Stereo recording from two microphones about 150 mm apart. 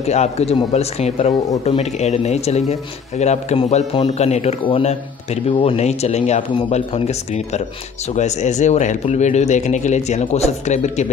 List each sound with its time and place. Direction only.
0.0 s speech: 45° left (ahead or behind)